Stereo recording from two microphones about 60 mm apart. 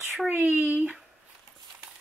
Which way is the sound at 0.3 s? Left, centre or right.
Right.